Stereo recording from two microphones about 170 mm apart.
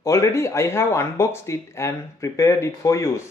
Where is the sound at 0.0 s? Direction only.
15° left (ahead or behind).